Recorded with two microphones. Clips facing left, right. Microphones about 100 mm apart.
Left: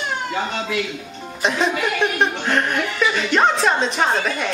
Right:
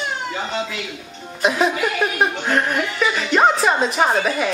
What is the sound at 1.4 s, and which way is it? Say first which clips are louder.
Speech: right 2 dB; 5° right (ahead or behind).